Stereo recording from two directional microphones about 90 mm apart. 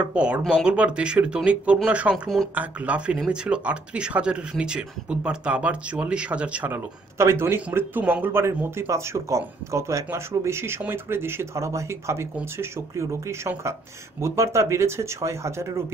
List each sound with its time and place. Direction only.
0.0 s speech: 15° right (ahead or behind)
6.7 s speech: 30° right (ahead or behind)